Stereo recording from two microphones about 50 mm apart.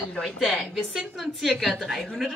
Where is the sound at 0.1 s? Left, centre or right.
Centre.